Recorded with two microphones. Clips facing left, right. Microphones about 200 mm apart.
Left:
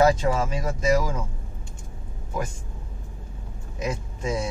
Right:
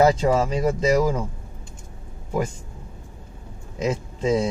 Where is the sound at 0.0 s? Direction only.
30° right (ahead or behind).